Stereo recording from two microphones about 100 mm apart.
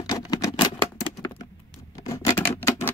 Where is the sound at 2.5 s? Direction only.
25° left (ahead or behind).